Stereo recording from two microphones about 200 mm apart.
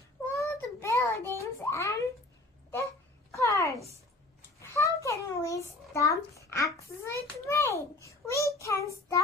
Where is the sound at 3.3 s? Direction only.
15° left (ahead or behind).